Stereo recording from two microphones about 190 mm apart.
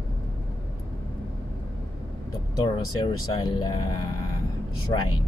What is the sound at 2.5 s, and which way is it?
Speech, 20° left (ahead or behind).